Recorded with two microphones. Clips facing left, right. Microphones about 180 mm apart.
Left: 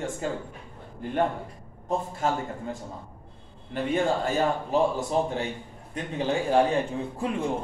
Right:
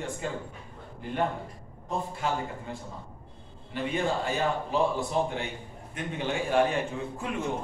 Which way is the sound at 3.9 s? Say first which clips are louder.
Left 4 dB; 45° left (ahead or behind).